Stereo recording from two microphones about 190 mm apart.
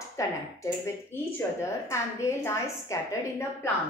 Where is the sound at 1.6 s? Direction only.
15° left (ahead or behind).